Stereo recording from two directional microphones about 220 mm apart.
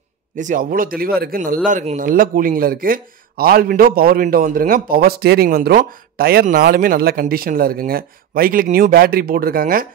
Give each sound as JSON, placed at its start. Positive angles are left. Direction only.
{"t": 0.4, "sound": "speech", "side_deg": -35}